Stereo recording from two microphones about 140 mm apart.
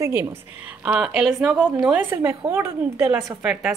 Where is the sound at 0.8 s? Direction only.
5° right (ahead or behind).